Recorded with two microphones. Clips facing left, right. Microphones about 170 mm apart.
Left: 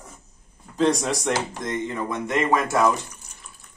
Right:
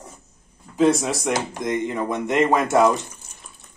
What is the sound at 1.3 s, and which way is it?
Speech, 15° right (ahead or behind).